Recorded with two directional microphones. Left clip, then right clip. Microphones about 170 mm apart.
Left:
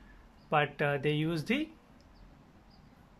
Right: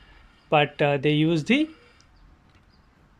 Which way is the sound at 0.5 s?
20° right (ahead or behind).